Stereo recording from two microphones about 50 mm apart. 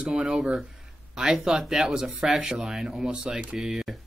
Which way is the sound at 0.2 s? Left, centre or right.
Centre.